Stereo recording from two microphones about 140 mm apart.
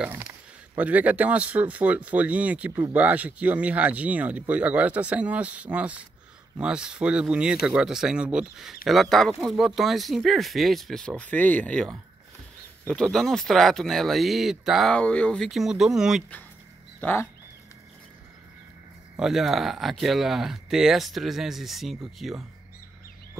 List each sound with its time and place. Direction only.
0.0 s speech: 10° right (ahead or behind)
17.0 s speech: 15° left (ahead or behind)
19.1 s speech: 5° right (ahead or behind)